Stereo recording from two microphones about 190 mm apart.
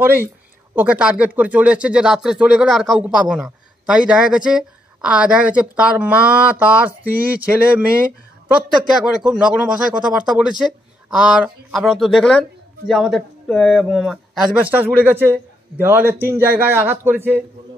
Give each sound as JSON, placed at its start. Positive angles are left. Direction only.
{"t": 0.7, "sound": "speech", "side_deg": -5}